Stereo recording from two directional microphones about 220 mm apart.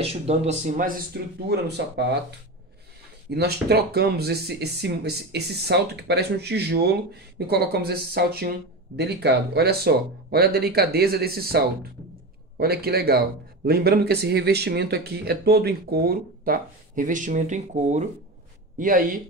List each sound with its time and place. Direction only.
0.0 s speech: 25° right (ahead or behind); by 2.0 s 50° right (ahead or behind)
3.3 s speech: 45° right (ahead or behind)